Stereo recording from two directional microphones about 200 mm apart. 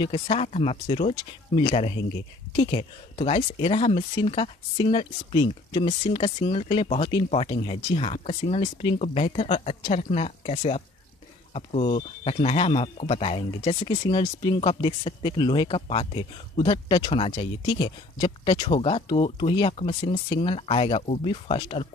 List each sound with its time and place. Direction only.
0.0 s speech: 30° left (ahead or behind)